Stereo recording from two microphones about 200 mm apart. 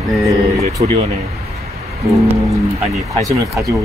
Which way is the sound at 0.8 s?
30° right (ahead or behind).